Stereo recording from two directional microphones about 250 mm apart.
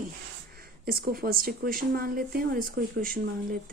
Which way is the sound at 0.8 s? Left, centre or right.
Right.